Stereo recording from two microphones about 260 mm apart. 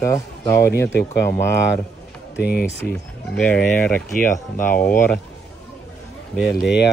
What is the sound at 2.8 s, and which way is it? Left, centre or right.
Speech, centre.